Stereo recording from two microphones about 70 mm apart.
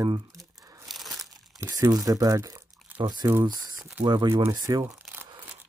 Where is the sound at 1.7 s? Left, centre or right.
Right.